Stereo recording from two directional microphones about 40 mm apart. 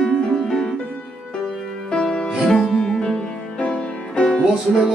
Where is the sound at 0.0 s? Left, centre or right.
Centre.